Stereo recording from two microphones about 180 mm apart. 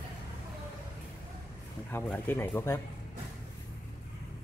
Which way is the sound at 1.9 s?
10° left (ahead or behind).